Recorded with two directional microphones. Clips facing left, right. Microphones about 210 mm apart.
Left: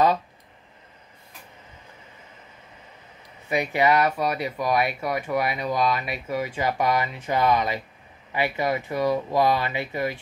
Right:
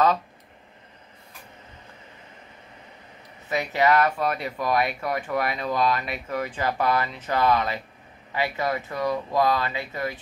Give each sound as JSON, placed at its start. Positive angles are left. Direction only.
{"t": 3.4, "sound": "speech", "side_deg": 15}